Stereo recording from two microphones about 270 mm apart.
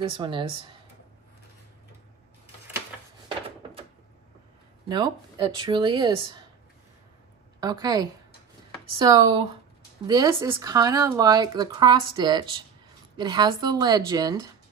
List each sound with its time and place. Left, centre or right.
0.0 s speech: centre
3.3 s drawer open or close: right
4.8 s speech: centre
7.6 s speech: centre